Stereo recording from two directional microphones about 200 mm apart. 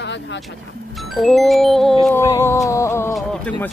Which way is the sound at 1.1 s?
Centre (ahead or behind).